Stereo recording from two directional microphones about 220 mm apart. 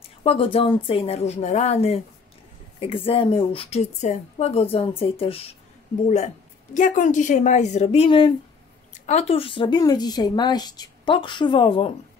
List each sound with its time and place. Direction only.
0.2 s a woman's voice: 25° left (ahead or behind)